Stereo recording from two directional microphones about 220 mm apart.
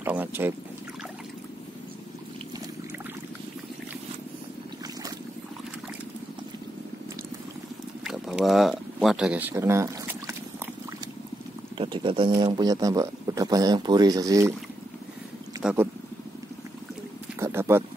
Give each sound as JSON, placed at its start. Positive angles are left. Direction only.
{"t": 0.0, "sound": "speech", "side_deg": -10}
{"t": 8.0, "sound": "speech", "side_deg": 0}
{"t": 11.8, "sound": "speech", "side_deg": -25}
{"t": 15.6, "sound": "speech", "side_deg": -10}
{"t": 17.4, "sound": "a sound", "side_deg": -10}